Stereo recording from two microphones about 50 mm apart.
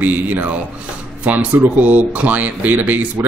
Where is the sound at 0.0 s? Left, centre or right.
Right.